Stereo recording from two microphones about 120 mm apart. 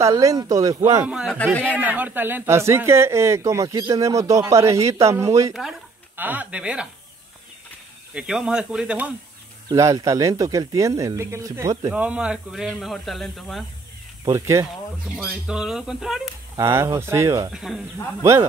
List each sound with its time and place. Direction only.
0.0 s speech: 30° right (ahead or behind)
1.0 s speech: 5° right (ahead or behind)
1.3 s a man's voice: 10° left (ahead or behind)
1.6 s speech: 15° right (ahead or behind)
5.5 s speech: 5° right (ahead or behind)
6.1 s speech: 15° right (ahead or behind)
8.1 s speech: 10° right (ahead or behind)
9.8 s speech: 25° right (ahead or behind)
11.9 s speech: 10° right (ahead or behind)
14.2 s speech: 25° right (ahead or behind)
15.1 s speech: 5° right (ahead or behind)
16.5 s speech: 25° right (ahead or behind)
17.5 s speech: 5° right (ahead or behind)